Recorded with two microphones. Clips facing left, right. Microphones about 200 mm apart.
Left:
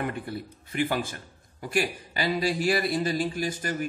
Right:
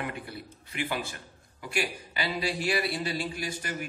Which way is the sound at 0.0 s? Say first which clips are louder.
Left 5 dB; 45° left (ahead or behind).